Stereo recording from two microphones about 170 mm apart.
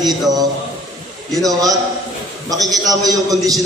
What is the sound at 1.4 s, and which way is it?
A man's voice, 20° right (ahead or behind).